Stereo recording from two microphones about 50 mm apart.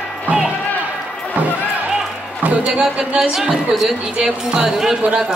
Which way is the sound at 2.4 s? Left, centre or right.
Right.